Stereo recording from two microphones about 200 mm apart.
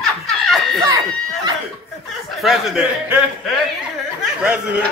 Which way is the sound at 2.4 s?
5° right (ahead or behind).